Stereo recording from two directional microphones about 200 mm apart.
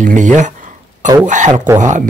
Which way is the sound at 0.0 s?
40° right (ahead or behind).